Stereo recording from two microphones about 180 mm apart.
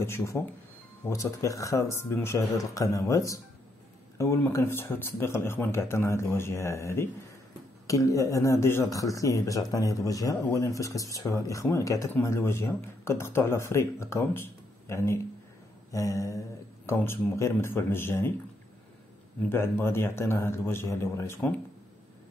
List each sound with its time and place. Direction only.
0.0 s speech: 15° left (ahead or behind)
19.5 s speech: 15° left (ahead or behind)